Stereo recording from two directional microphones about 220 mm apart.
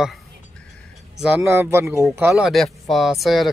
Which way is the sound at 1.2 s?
10° right (ahead or behind).